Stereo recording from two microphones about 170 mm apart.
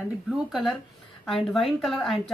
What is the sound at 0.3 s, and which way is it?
Speech, centre (ahead or behind).